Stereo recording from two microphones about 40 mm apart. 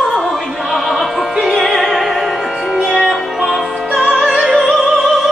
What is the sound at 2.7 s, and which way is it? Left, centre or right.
Music, centre.